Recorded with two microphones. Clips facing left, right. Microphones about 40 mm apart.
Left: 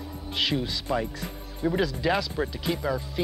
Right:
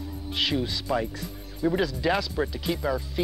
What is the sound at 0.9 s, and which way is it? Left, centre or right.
Speech, centre.